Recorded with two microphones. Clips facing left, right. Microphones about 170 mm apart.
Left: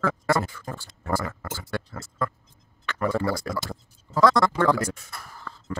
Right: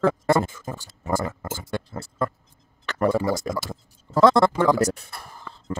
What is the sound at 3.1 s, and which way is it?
Tick-tock, 15° right (ahead or behind).